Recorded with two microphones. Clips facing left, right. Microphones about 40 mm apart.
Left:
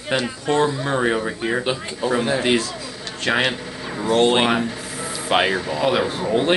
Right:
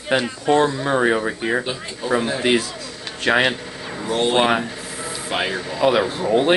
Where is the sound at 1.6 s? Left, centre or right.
Centre.